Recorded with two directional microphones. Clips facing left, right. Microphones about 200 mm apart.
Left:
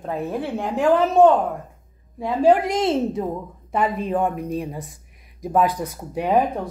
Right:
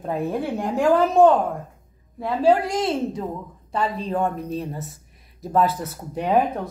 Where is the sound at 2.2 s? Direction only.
15° left (ahead or behind).